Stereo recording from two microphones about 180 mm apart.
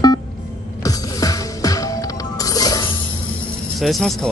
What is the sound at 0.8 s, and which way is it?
Music, 20° left (ahead or behind).